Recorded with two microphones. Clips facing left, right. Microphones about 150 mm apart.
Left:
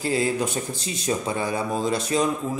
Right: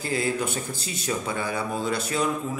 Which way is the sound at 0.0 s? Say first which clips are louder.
Left 3 dB; 30° left (ahead or behind).